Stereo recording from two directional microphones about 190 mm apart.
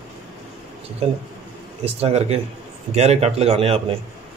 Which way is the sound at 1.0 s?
35° right (ahead or behind).